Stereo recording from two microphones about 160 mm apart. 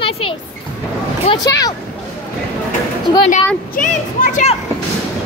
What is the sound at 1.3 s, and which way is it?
Speech, 25° left (ahead or behind).